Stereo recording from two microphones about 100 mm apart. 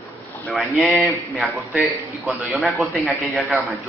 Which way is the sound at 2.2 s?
15° right (ahead or behind).